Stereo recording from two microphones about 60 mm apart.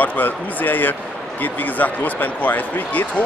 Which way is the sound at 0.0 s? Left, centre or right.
Left.